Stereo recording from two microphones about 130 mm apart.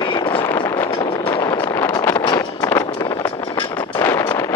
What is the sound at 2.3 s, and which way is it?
Vehicle, 25° left (ahead or behind).